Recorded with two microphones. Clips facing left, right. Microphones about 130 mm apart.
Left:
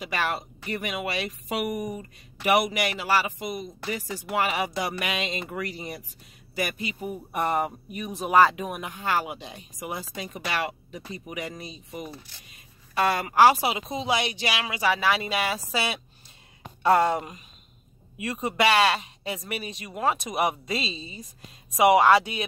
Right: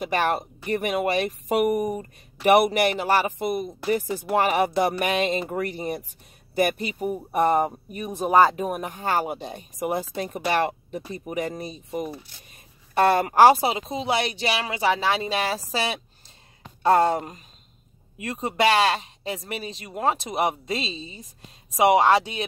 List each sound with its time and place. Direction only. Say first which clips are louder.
0.0 s speech: right 5 dB; 50° right (ahead or behind)
7.1 s speech: right 6 dB; 35° right (ahead or behind)